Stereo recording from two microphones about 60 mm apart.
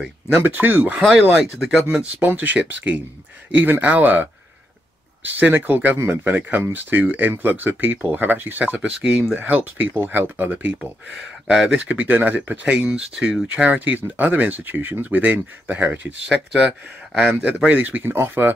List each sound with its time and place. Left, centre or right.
0.4 s speech: right
1.3 s speech: centre
2.1 s speech: right
11.1 s speech: centre
11.7 s speech: right
13.6 s speech: right
16.3 s speech: centre
17.7 s speech: right